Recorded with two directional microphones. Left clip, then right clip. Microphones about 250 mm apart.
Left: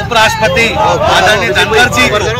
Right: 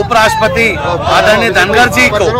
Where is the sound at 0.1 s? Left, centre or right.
Centre.